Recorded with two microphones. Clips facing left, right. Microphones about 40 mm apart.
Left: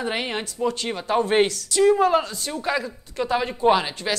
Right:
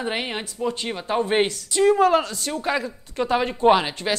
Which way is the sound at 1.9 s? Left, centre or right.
Right.